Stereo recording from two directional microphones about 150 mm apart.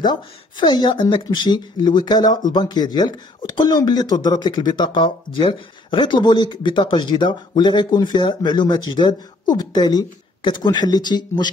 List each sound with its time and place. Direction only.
0.0 s speech: 30° left (ahead or behind)